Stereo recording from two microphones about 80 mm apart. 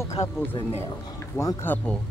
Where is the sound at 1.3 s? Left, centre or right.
Left.